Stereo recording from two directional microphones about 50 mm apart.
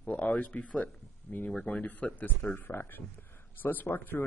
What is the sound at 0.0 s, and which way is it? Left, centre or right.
Speech, left.